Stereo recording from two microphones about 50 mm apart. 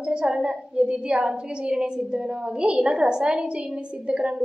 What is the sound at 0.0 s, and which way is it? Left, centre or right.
A woman's voice, centre.